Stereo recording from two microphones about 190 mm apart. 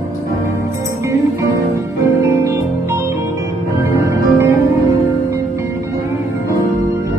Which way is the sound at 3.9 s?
15° right (ahead or behind).